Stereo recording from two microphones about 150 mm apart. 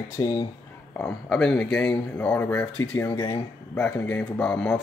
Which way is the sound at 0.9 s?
5° left (ahead or behind).